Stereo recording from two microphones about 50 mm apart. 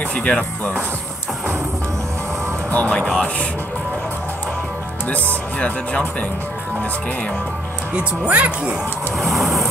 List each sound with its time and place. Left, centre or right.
0.1 s speech: left
2.7 s speech: left
3.0 s speech: centre
5.0 s speech: left
7.9 s speech: right
9.2 s vehicle: centre